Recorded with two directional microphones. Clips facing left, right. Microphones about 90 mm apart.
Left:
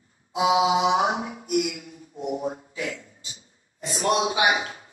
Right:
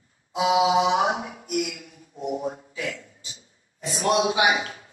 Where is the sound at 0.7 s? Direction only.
25° left (ahead or behind).